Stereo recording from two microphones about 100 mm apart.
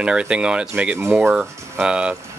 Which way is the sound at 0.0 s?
10° right (ahead or behind).